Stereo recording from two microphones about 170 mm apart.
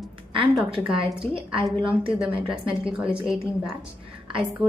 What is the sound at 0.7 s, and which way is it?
Speech, 30° right (ahead or behind).